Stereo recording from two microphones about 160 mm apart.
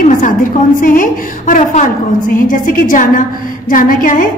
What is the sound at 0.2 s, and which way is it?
A woman's voice, 55° left (ahead or behind).